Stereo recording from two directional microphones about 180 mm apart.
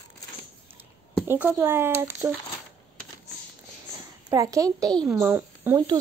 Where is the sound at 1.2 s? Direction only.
10° right (ahead or behind).